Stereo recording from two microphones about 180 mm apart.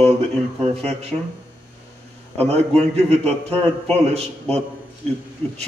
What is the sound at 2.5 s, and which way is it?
Speech, 35° right (ahead or behind).